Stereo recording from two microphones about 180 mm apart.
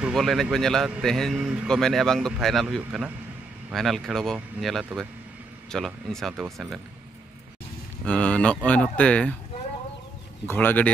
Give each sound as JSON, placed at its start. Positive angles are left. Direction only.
{"t": 0.0, "sound": "speech", "side_deg": 0}
{"t": 8.0, "sound": "speech", "side_deg": 5}
{"t": 10.4, "sound": "speech", "side_deg": 10}